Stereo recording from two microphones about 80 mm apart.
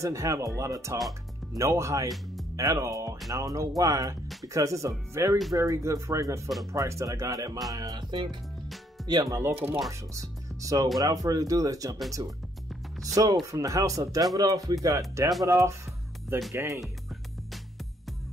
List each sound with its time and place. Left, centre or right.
0.0 s speech: right
7.7 s music: right
9.0 s music: right
9.4 s speech: right
9.8 s speech: right
12.2 s music: right
13.0 s speech: right
16.8 s music: centre